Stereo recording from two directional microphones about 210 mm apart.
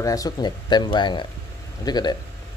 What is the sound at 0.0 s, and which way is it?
Speech, 15° left (ahead or behind).